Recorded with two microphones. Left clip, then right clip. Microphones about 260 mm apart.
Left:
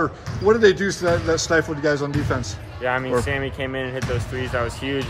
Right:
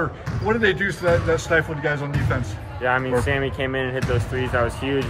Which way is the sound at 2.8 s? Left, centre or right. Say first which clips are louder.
Right 1 dB; centre.